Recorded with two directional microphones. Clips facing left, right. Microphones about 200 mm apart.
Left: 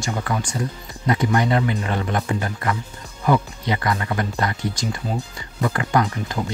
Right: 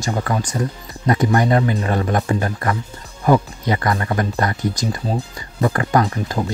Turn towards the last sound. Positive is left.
turn(degrees=-40)  # may be behind; listen again after turning